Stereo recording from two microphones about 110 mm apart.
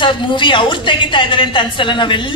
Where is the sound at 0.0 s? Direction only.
50° left (ahead or behind).